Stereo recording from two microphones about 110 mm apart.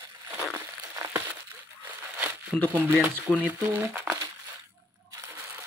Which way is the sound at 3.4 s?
15° right (ahead or behind).